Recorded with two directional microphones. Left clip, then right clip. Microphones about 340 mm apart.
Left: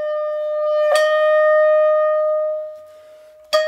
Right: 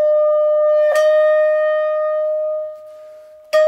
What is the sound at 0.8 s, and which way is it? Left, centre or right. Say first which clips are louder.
Music: right 2 dB; left.